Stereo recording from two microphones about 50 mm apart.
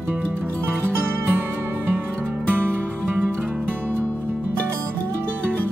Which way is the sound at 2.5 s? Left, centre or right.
Right.